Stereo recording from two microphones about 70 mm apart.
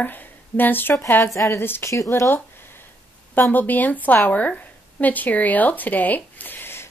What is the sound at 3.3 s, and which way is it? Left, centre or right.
Speech, left.